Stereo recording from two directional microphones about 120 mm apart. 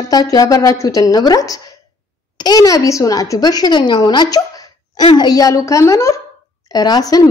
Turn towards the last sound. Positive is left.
turn(degrees=30)  # may be behind; listen again after turning